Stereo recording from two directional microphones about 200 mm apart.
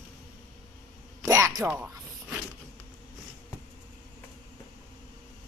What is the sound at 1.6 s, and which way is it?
Speech, 5° right (ahead or behind).